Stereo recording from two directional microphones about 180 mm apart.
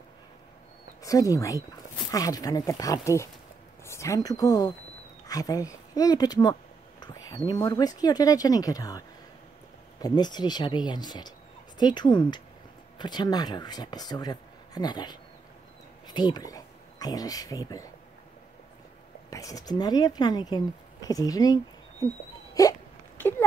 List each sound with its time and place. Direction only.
1.0 s speech: 20° left (ahead or behind)
19.3 s speech: 20° left (ahead or behind)
22.5 s hiccup: 20° left (ahead or behind)